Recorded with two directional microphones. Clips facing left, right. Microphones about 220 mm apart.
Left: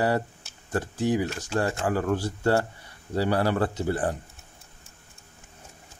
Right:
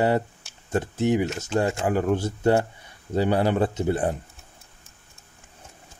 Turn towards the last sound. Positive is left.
turn(degrees=-20)  # may be behind; listen again after turning